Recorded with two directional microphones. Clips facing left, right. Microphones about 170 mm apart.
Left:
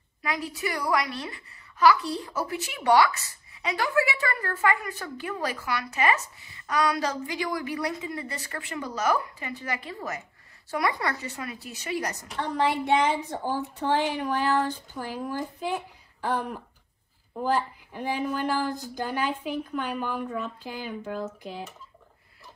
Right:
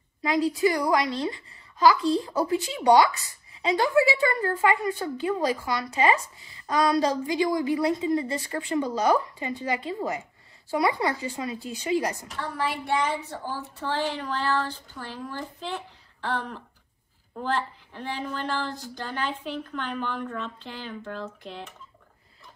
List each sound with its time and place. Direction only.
0.2 s a woman's voice: 20° right (ahead or behind)
12.4 s a woman's voice: 20° left (ahead or behind); by 21.7 s 5° left (ahead or behind)